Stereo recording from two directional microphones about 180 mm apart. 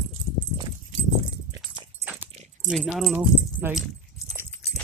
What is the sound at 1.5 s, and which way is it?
Dog, 10° right (ahead or behind).